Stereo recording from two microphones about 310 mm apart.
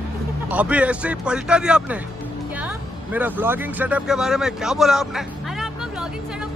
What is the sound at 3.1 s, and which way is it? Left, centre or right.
Speech, centre.